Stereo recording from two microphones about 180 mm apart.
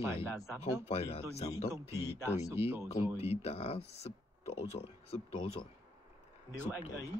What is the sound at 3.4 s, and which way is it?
Speech, 35° left (ahead or behind).